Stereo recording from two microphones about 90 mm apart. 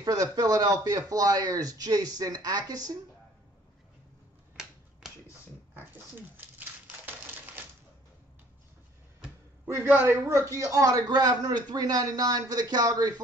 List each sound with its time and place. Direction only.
0.0 s a man's voice: 45° right (ahead or behind)
5.0 s finger snapping: 5° right (ahead or behind)
5.8 s a sound: 20° right (ahead or behind)
7.1 s typewriter: 20° right (ahead or behind)
9.8 s a man's voice: 20° right (ahead or behind); by 13.1 s 50° right (ahead or behind)